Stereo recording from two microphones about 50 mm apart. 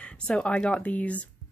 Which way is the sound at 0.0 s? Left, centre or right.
Left.